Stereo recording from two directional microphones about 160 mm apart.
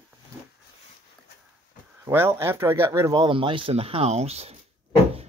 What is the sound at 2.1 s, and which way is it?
Speech, 15° right (ahead or behind).